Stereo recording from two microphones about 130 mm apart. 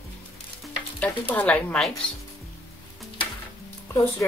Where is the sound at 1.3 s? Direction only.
10° left (ahead or behind).